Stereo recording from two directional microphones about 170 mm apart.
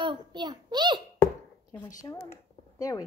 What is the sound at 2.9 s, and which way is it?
Speech, 20° left (ahead or behind).